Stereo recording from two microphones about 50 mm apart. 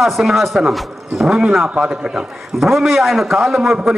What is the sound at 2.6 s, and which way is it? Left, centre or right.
A man's voice, centre.